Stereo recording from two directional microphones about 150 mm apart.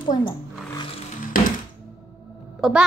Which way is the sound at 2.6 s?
5° right (ahead or behind).